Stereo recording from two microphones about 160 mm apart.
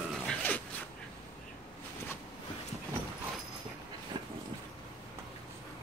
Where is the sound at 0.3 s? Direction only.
10° left (ahead or behind).